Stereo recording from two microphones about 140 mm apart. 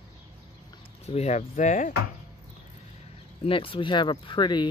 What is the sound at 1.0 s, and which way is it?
Speech, 50° left (ahead or behind).